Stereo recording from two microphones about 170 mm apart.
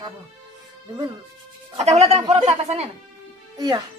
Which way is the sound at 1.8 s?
40° right (ahead or behind).